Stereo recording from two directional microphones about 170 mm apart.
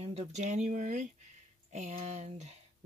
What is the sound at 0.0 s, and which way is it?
Speech, 40° right (ahead or behind).